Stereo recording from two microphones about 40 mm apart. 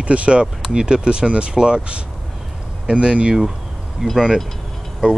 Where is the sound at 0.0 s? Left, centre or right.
Right.